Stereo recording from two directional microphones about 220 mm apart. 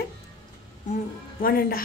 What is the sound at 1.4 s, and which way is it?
Speech, 40° left (ahead or behind).